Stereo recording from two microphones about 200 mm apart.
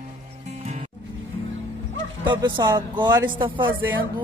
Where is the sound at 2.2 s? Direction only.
20° right (ahead or behind).